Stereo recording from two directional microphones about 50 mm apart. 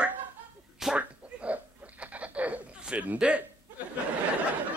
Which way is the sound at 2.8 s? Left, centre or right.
Right.